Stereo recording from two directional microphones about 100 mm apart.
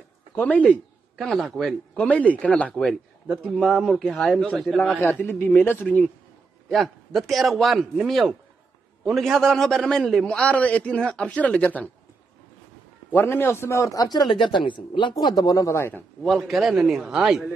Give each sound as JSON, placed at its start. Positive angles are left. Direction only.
{"t": 0.4, "sound": "a man's voice", "side_deg": 15}
{"t": 1.1, "sound": "a man's voice", "side_deg": 5}
{"t": 2.0, "sound": "a man's voice", "side_deg": 15}
{"t": 5.2, "sound": "speech", "side_deg": 20}
{"t": 6.7, "sound": "a man's voice", "side_deg": 0}
{"t": 13.1, "sound": "a man's voice", "side_deg": 20}
{"t": 16.2, "sound": "a man's voice", "side_deg": 0}